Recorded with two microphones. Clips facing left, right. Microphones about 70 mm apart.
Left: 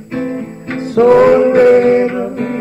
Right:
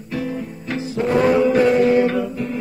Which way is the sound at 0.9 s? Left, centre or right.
Left.